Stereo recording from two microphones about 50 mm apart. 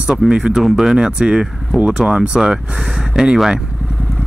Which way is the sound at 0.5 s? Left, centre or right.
Centre.